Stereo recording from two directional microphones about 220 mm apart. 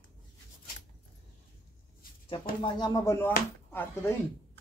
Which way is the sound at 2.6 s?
20° left (ahead or behind).